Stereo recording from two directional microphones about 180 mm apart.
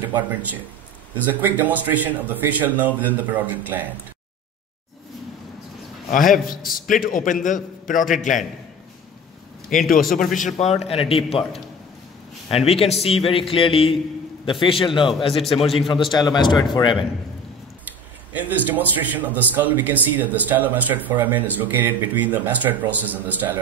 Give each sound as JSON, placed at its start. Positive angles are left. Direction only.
{"t": 1.2, "sound": "speech", "side_deg": -10}
{"t": 6.0, "sound": "a man's voice", "side_deg": 50}
{"t": 9.7, "sound": "a man's voice", "side_deg": 50}
{"t": 15.6, "sound": "a man's voice", "side_deg": 0}
{"t": 16.1, "sound": "a man's voice", "side_deg": 25}
{"t": 18.3, "sound": "speech", "side_deg": -10}